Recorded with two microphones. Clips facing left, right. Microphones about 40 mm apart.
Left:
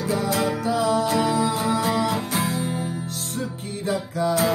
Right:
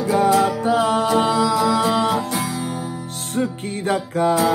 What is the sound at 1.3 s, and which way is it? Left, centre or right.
Music, right.